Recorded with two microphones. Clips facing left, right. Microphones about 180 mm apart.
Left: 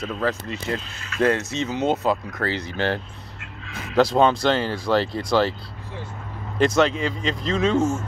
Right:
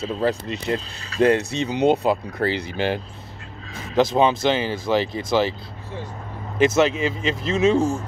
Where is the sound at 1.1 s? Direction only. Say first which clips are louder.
Right 3 dB; 35° right (ahead or behind).